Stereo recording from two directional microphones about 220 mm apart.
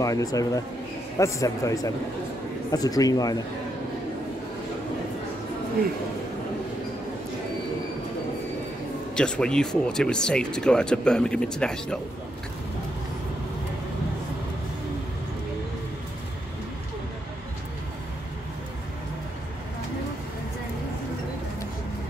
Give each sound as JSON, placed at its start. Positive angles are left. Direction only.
{"t": 0.0, "sound": "a man's voice", "side_deg": 15}
{"t": 9.1, "sound": "speech", "side_deg": 5}